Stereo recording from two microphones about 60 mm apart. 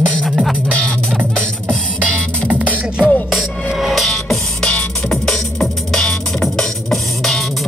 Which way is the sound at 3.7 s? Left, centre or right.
Centre.